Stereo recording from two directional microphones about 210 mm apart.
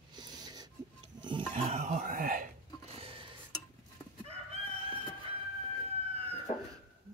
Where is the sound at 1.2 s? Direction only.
25° right (ahead or behind).